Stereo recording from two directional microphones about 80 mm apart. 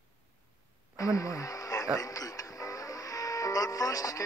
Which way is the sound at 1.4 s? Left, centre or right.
Left.